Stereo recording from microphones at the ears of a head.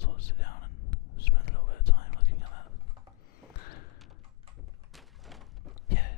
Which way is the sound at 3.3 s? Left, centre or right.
Left.